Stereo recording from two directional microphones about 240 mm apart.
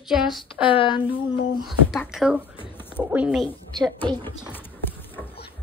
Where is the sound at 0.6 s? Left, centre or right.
Left.